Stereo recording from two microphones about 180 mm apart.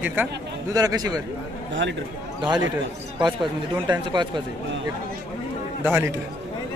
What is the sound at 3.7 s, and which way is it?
Speech, 25° right (ahead or behind).